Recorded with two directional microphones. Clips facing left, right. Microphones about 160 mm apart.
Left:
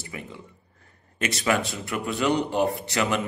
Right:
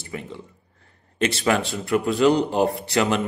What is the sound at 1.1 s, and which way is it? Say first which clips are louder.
A man's voice: right 3 dB; 30° right (ahead or behind).